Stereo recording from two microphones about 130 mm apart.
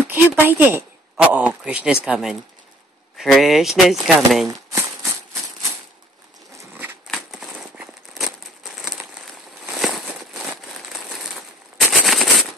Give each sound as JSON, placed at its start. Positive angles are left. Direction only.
{"t": 0.1, "sound": "speech", "side_deg": -15}
{"t": 4.5, "sound": "a sound", "side_deg": -20}
{"t": 7.1, "sound": "crumpling", "side_deg": 0}
{"t": 11.9, "sound": "machine gun", "side_deg": 0}